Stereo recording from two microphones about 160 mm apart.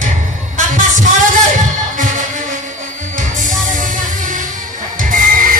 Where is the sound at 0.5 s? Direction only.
50° right (ahead or behind).